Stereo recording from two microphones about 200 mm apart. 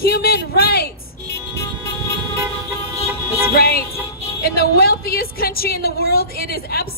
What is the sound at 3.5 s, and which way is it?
A woman's voice, 50° left (ahead or behind).